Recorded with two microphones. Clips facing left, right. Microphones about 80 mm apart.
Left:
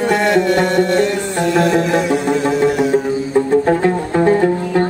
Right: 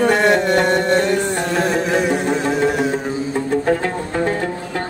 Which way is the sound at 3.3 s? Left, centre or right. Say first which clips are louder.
Left 5 dB; centre.